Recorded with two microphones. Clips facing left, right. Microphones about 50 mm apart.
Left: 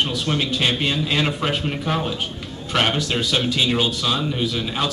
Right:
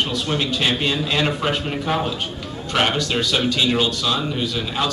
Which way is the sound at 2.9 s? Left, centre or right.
Centre.